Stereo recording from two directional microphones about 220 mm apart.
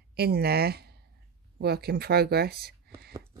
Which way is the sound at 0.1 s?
45° right (ahead or behind).